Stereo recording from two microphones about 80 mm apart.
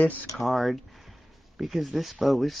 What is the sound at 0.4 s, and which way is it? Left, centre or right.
Speech, centre.